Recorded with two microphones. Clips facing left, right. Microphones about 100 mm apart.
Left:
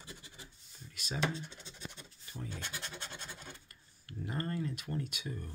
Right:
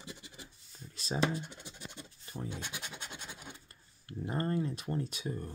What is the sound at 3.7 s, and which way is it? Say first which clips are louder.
Speech: right 4 dB; 25° right (ahead or behind).